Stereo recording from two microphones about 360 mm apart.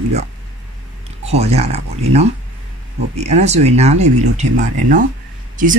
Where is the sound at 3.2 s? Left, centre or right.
Centre.